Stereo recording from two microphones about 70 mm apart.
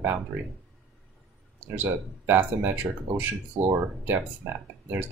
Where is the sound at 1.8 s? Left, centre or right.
Right.